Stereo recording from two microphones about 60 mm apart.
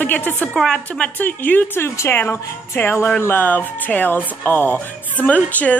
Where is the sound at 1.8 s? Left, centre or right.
Left.